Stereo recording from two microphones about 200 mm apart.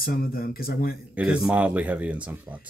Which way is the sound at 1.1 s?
5° right (ahead or behind).